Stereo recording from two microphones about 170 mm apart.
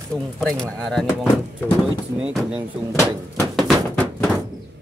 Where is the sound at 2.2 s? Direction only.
5° right (ahead or behind).